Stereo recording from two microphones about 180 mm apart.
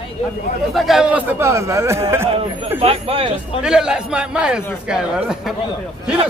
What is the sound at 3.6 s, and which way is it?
A man's voice, 5° right (ahead or behind).